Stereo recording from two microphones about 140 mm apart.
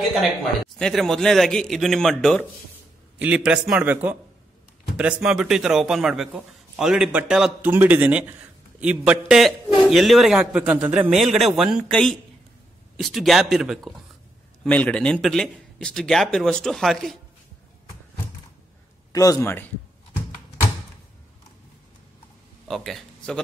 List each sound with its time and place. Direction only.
0.7 s a man's voice: 5° left (ahead or behind)
14.6 s a man's voice: 10° left (ahead or behind)
19.1 s a man's voice: 25° left (ahead or behind)
22.7 s speech: centre (ahead or behind)